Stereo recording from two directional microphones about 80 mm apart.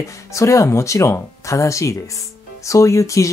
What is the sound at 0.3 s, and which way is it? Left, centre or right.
Speech, left.